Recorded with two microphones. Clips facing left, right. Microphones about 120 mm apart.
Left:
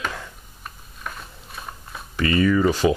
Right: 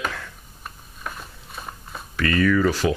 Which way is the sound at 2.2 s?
20° left (ahead or behind).